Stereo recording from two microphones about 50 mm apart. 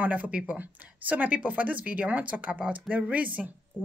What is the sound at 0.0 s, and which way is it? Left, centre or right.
Speech, right.